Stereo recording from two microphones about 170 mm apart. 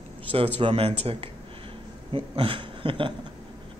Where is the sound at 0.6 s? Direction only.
35° right (ahead or behind).